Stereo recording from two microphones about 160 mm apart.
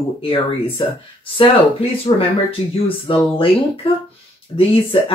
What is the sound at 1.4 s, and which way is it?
Speech, 35° left (ahead or behind).